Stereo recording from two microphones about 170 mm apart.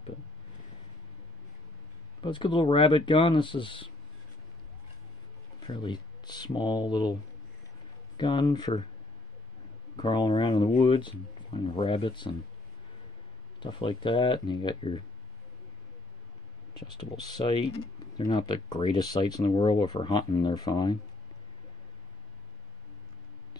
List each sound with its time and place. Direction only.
2.2 s speech: 30° left (ahead or behind)
5.7 s speech: 25° left (ahead or behind)
8.2 s speech: 25° left (ahead or behind)
9.9 s speech: 25° left (ahead or behind)
13.6 s speech: 30° left (ahead or behind)
16.8 s speech: 25° left (ahead or behind)